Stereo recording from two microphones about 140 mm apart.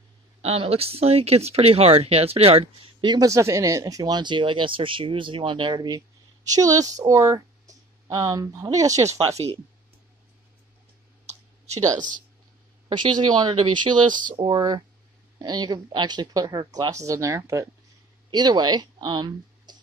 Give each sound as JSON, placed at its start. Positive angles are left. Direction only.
{"t": 0.4, "sound": "speech", "side_deg": -45}
{"t": 11.2, "sound": "clicking", "side_deg": -50}
{"t": 12.9, "sound": "speech", "side_deg": -30}